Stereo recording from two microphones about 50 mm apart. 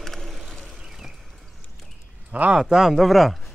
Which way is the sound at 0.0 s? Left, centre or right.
Centre.